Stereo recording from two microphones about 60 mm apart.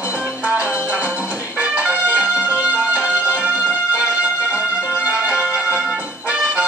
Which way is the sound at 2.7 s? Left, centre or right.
Right.